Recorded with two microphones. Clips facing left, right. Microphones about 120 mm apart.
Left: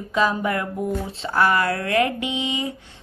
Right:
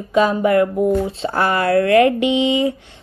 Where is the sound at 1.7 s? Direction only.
55° right (ahead or behind).